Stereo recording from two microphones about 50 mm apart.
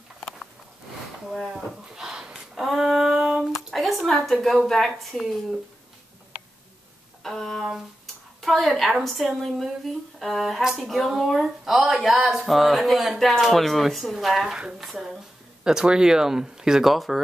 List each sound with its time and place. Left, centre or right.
2.0 s a sound: centre
2.5 s hands: centre
3.7 s a sound: centre
4.3 s speech: centre
7.2 s music: centre
8.4 s a woman's voice: centre
14.4 s speech: centre
14.8 s speech: centre
15.6 s speech: centre